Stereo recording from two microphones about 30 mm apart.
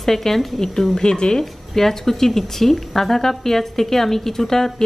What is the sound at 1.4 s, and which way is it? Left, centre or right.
A woman's voice, centre.